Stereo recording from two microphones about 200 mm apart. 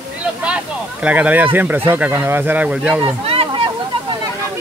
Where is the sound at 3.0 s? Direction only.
30° right (ahead or behind).